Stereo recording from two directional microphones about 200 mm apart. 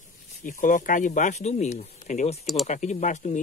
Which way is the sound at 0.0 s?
40° left (ahead or behind).